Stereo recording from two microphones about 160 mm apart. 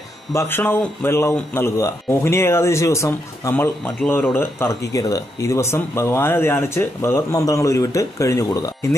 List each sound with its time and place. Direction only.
0.3 s speech: 15° left (ahead or behind)